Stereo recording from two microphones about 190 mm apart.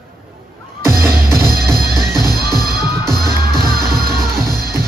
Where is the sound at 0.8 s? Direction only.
15° right (ahead or behind).